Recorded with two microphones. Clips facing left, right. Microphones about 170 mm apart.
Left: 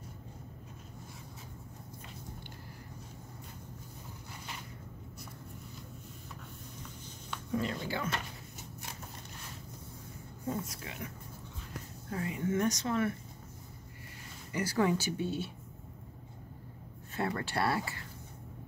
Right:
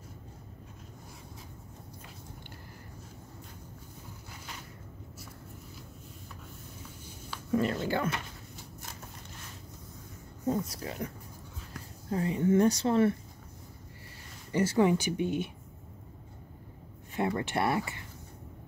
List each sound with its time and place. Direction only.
7.5 s speech: 55° right (ahead or behind)
10.4 s speech: 30° right (ahead or behind)
12.1 s speech: 30° right (ahead or behind)
14.5 s speech: 25° right (ahead or behind)
17.1 s speech: 20° right (ahead or behind)